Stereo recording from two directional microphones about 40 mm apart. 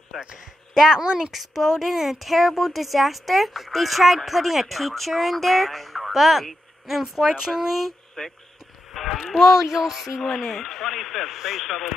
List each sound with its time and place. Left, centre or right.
0.9 s speech: centre
1.3 s speech: centre
8.2 s a sound: centre
8.9 s speech: centre